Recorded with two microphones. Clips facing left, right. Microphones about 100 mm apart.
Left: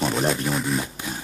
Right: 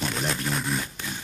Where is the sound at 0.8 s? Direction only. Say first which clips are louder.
Left 4 dB; 25° left (ahead or behind).